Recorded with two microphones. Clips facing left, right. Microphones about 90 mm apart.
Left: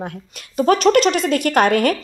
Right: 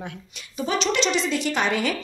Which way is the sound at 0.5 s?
55° left (ahead or behind).